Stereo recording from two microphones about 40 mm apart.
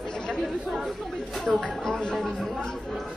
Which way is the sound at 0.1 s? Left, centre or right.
Centre.